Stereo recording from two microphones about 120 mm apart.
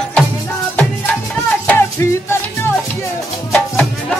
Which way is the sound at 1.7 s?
20° left (ahead or behind).